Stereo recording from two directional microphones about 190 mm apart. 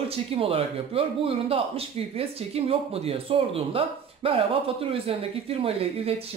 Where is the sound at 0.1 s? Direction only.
30° right (ahead or behind).